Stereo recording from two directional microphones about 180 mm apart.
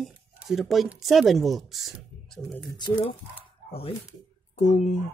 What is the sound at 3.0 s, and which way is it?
A woman's voice, 35° left (ahead or behind).